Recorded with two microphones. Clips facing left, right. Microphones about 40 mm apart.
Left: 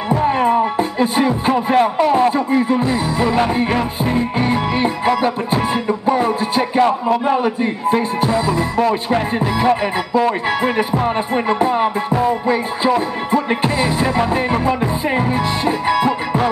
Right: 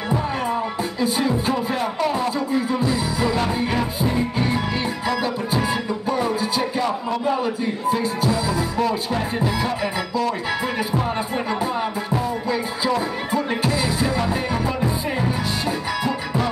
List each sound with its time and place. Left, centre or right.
0.1 s music: left